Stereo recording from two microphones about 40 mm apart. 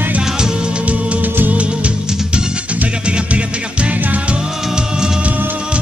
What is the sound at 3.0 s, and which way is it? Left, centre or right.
Music, right.